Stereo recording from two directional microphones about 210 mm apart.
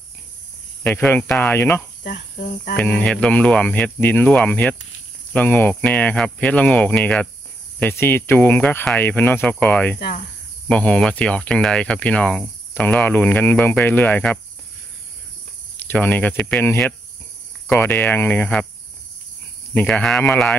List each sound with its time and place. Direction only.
0.8 s speech: 10° left (ahead or behind)
2.3 s cricket: 35° left (ahead or behind)
2.7 s speech: 5° left (ahead or behind)
9.9 s cricket: 50° left (ahead or behind)
10.7 s cricket: 5° left (ahead or behind)
15.9 s speech: 10° left (ahead or behind)
19.7 s cricket: 5° left (ahead or behind)